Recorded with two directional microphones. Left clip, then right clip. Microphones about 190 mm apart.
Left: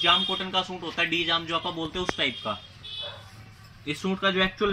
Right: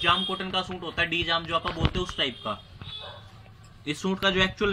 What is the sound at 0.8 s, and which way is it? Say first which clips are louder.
Speech: left 1 dB; 15° right (ahead or behind).